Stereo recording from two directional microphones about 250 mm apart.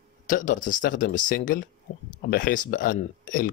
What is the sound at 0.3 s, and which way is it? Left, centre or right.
Speech, left.